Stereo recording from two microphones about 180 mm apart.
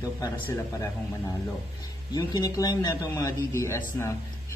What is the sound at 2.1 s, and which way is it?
A man's voice, 20° left (ahead or behind).